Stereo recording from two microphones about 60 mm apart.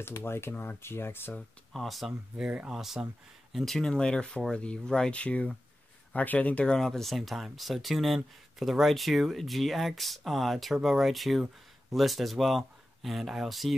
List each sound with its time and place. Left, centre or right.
0.0 s speech: left
1.7 s speech: centre
2.3 s speech: centre
2.7 s speech: centre
3.5 s speech: centre
6.9 s speech: centre